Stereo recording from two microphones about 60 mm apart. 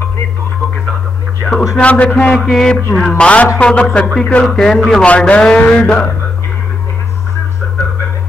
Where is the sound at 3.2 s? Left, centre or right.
Left.